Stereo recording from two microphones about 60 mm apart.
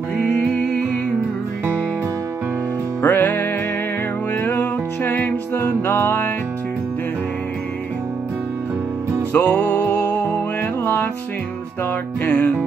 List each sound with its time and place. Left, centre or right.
3.0 s music: left
9.3 s music: left
12.3 s music: left